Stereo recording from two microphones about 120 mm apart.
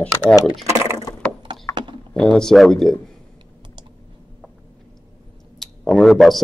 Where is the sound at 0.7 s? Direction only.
25° right (ahead or behind).